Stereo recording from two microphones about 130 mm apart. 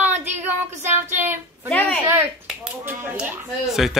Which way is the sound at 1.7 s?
15° left (ahead or behind).